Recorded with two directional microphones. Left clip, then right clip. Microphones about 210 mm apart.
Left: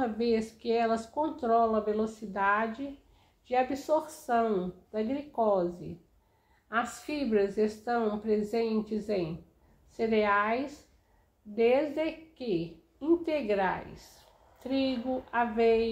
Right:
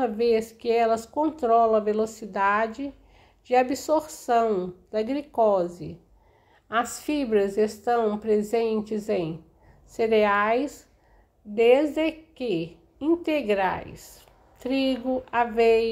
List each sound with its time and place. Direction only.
0.0 s speech: 45° right (ahead or behind)